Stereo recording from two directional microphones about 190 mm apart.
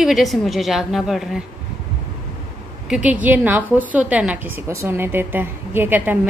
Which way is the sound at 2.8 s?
5° right (ahead or behind).